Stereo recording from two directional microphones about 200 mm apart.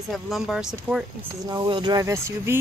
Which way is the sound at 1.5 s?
20° right (ahead or behind).